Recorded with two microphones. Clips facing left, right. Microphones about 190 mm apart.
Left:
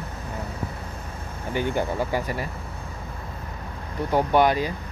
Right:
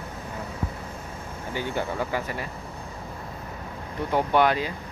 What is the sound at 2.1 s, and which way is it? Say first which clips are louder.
Speech: left 3 dB; 40° left (ahead or behind).